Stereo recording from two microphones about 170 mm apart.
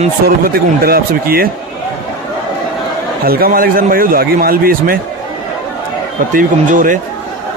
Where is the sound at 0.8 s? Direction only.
60° right (ahead or behind).